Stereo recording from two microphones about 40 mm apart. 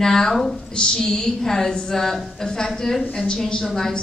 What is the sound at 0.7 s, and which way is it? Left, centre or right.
A woman's voice, centre.